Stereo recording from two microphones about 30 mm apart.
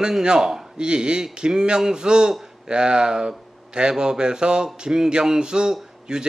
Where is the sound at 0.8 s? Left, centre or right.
Right.